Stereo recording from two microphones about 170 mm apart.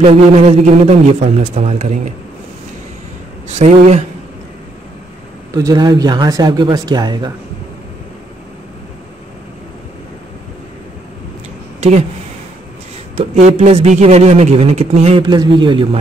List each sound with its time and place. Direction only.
0.0 s a man's voice: 40° right (ahead or behind)
3.4 s a man's voice: 40° right (ahead or behind)
5.5 s speech: 20° right (ahead or behind)
13.1 s a man's voice: 40° right (ahead or behind)